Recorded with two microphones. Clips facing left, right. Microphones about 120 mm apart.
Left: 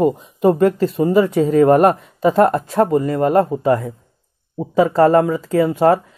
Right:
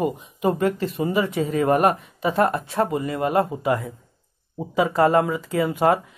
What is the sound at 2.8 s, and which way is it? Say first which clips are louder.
Speech: left 7 dB; 5° right (ahead or behind).